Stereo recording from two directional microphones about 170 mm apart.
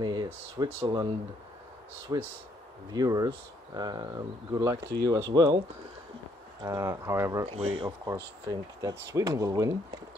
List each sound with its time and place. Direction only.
0.0 s speech: 25° right (ahead or behind)
2.1 s speech: 20° right (ahead or behind)
6.6 s speech: 20° right (ahead or behind)
7.4 s speech: 35° right (ahead or behind); by 9.8 s 20° right (ahead or behind)